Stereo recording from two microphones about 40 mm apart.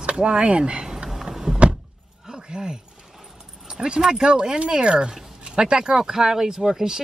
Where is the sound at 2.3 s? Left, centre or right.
Right.